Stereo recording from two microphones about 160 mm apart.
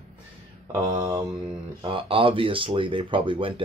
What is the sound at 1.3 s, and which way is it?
Speech, 30° right (ahead or behind).